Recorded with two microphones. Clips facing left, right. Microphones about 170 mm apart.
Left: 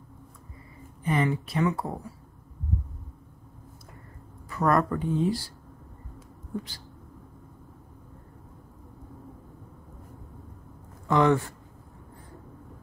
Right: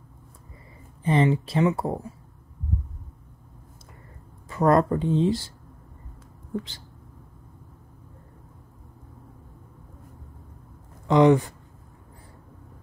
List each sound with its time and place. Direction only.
1.0 s speech: 30° right (ahead or behind)
4.5 s speech: 20° right (ahead or behind)
11.1 s speech: 20° right (ahead or behind)